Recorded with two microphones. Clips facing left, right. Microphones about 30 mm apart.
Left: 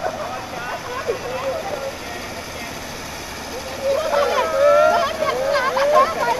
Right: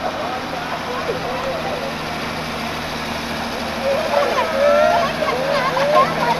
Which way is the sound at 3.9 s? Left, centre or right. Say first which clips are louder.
Even; right.